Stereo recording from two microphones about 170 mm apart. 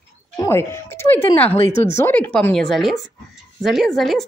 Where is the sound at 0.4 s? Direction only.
15° left (ahead or behind).